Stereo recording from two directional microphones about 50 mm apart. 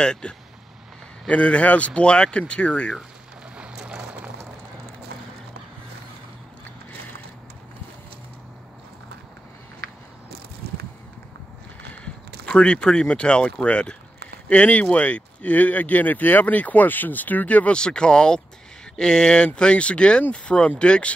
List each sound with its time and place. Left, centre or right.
0.0 s speech: centre
3.5 s vehicle: right
12.4 s speech: left
17.7 s speech: centre